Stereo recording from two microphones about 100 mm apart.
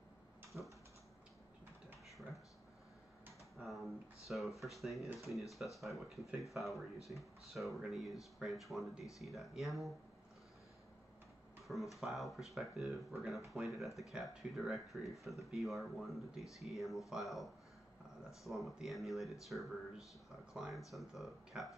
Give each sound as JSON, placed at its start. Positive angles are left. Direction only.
{"t": 0.5, "sound": "typing", "side_deg": -25}
{"t": 3.5, "sound": "speech", "side_deg": 0}
{"t": 11.6, "sound": "speech", "side_deg": 0}